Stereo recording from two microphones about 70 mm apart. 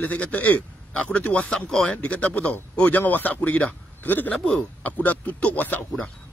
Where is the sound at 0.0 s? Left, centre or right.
Left.